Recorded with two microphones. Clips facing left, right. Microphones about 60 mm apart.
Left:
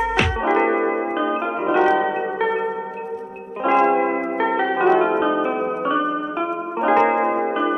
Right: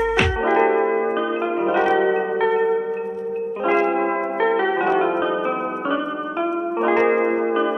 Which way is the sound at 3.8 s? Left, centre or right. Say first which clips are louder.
Left 3 dB; centre.